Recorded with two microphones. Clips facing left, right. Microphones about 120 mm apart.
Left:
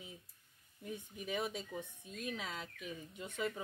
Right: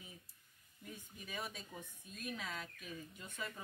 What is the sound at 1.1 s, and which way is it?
Speech, 20° left (ahead or behind).